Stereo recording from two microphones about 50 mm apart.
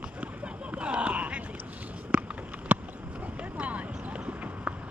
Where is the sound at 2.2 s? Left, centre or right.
Right.